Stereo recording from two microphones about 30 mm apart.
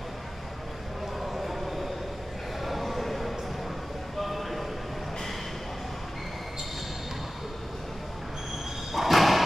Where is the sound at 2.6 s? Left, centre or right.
Centre.